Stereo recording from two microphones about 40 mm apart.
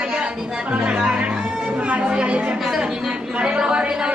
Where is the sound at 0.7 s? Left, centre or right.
Right.